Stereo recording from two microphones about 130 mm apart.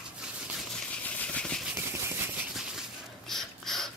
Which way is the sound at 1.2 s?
5° left (ahead or behind).